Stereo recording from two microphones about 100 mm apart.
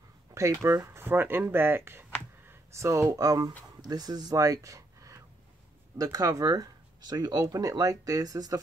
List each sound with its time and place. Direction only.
0.3 s speech: 30° right (ahead or behind)